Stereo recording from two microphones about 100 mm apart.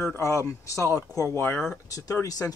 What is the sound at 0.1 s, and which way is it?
Speech, 30° left (ahead or behind).